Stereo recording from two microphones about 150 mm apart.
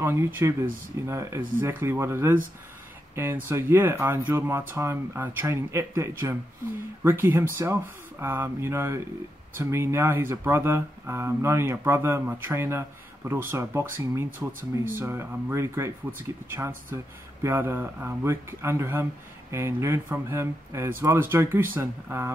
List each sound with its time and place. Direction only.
0.0 s speech: 15° right (ahead or behind)
3.4 s speech: 15° right (ahead or behind)